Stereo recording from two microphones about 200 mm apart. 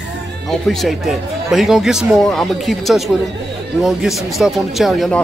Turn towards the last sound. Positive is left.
turn(degrees=0)  # may be behind; listen again after turning